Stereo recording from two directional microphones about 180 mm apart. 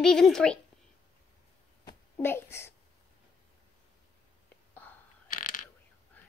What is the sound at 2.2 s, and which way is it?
Speech, 15° left (ahead or behind).